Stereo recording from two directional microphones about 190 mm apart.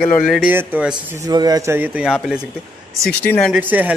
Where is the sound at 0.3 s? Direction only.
5° right (ahead or behind).